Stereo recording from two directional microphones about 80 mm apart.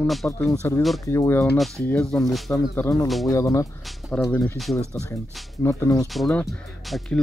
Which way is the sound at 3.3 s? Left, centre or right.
Left.